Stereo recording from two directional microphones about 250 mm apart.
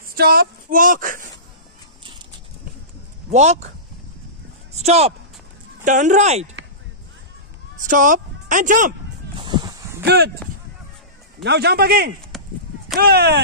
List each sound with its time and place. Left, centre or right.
0.1 s speech: right
3.3 s speech: right
4.7 s speech: right
7.8 s a man's voice: right
9.4 s a sound: centre
10.0 s speech: right
11.4 s a man's voice: right